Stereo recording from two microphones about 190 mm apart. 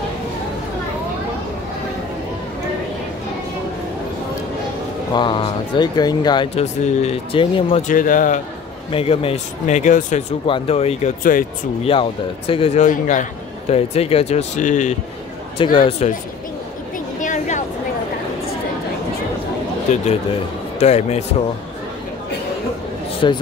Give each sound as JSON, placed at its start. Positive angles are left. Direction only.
{"t": 5.1, "sound": "speech", "side_deg": 25}
{"t": 7.9, "sound": "speech", "side_deg": 45}
{"t": 8.9, "sound": "a man's voice", "side_deg": 30}
{"t": 10.4, "sound": "a man's voice", "side_deg": 30}
{"t": 11.8, "sound": "a man's voice", "side_deg": 30}
{"t": 15.5, "sound": "speech", "side_deg": 25}
{"t": 17.2, "sound": "a sound", "side_deg": 40}
{"t": 19.9, "sound": "a man's voice", "side_deg": 40}
{"t": 23.2, "sound": "speech", "side_deg": 25}